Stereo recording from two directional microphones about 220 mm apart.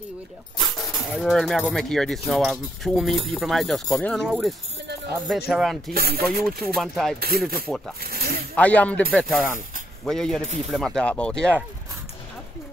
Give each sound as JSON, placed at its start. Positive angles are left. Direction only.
{"t": 1.2, "sound": "speech", "side_deg": 0}
{"t": 5.9, "sound": "mechanisms", "side_deg": -45}
{"t": 6.2, "sound": "speech", "side_deg": 0}
{"t": 7.2, "sound": "mechanisms", "side_deg": -45}
{"t": 7.6, "sound": "speech", "side_deg": 0}
{"t": 8.0, "sound": "coin", "side_deg": -45}
{"t": 8.5, "sound": "speech", "side_deg": 5}